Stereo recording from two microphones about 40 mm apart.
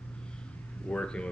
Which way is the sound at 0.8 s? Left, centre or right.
Left.